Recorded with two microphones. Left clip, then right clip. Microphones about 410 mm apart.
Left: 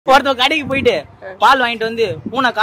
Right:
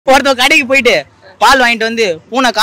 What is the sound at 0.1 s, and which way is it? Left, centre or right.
A man's voice, right.